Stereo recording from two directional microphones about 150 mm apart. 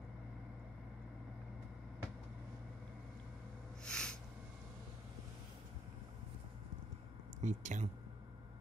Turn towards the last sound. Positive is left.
turn(degrees=-55)  # may be behind; listen again after turning